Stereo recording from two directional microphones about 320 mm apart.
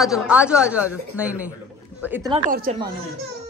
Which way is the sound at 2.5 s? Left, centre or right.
Right.